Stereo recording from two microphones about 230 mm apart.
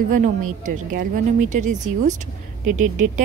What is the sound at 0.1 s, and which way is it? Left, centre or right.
A woman's voice, right.